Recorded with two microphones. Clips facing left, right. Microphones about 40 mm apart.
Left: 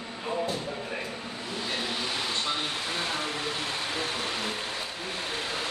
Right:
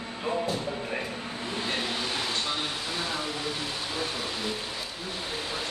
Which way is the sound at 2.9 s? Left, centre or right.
Left.